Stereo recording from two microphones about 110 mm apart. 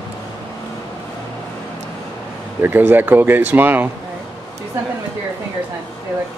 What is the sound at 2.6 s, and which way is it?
Speech, 20° right (ahead or behind).